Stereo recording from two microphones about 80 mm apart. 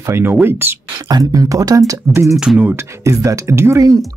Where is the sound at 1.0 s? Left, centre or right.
Right.